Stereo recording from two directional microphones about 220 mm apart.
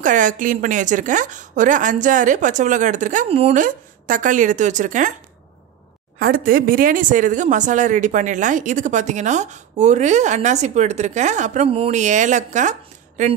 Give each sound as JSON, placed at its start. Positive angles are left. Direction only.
{"t": 0.0, "sound": "speech", "side_deg": -35}
{"t": 6.1, "sound": "speech", "side_deg": -40}